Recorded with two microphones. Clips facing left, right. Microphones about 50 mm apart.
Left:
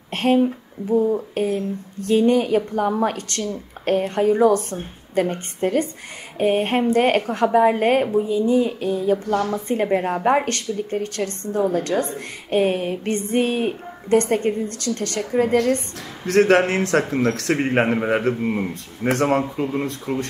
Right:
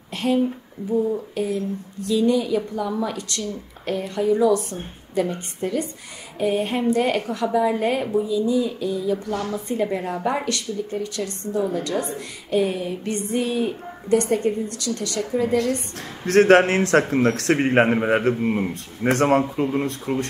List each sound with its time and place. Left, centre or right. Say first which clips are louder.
0.1 s a woman's voice: left 3 dB; left
16.3 s speech: right 1 dB; right
17.6 s a man's voice: right 1 dB; centre